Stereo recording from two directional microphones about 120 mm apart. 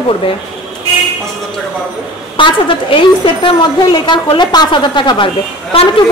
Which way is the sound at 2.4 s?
45° left (ahead or behind).